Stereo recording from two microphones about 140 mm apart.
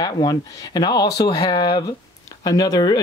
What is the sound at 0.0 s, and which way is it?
Speech, 25° left (ahead or behind).